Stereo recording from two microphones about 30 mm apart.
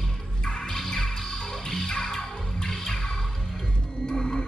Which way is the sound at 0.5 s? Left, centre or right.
Centre.